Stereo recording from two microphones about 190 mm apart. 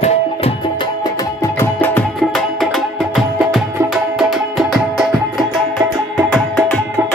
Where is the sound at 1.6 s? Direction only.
10° left (ahead or behind).